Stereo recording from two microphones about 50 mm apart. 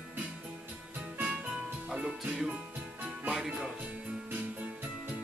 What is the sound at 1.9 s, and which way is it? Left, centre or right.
Music, centre.